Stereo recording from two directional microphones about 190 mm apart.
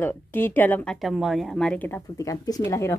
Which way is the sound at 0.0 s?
10° left (ahead or behind).